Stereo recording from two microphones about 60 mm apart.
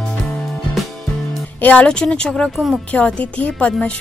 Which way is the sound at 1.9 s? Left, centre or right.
Centre.